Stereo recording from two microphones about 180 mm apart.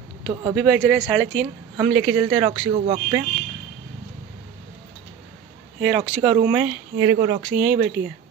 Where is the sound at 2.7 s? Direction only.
35° right (ahead or behind).